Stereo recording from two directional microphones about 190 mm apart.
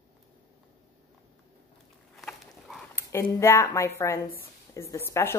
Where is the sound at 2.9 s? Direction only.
15° left (ahead or behind).